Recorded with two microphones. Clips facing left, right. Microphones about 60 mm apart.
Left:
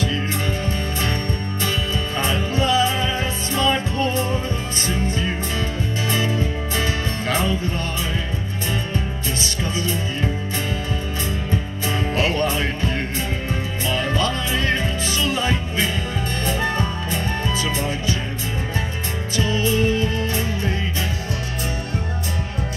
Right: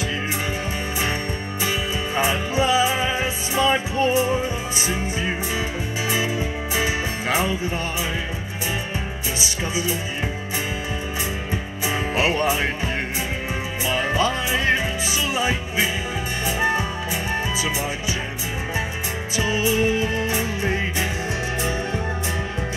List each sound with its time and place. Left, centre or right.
2.1 s music: centre
9.4 s music: centre
12.2 s music: centre
19.3 s music: centre